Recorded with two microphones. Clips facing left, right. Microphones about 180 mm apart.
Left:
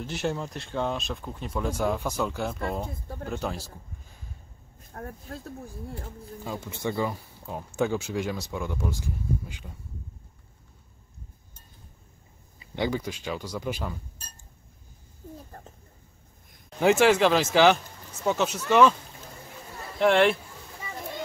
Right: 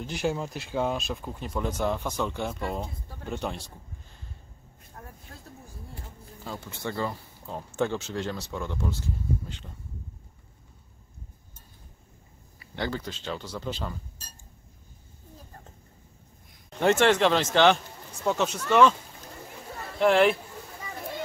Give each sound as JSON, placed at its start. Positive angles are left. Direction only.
{"t": 0.0, "sound": "speech", "side_deg": 0}
{"t": 4.9, "sound": "speech", "side_deg": 60}
{"t": 6.4, "sound": "speech", "side_deg": 15}
{"t": 12.5, "sound": "speech", "side_deg": 15}
{"t": 16.8, "sound": "speech", "side_deg": 5}
{"t": 20.0, "sound": "speech", "side_deg": 0}